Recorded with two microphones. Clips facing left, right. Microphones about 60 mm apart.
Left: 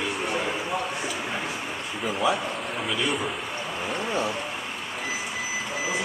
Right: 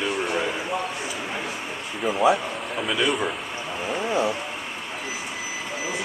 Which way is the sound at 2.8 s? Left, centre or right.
Right.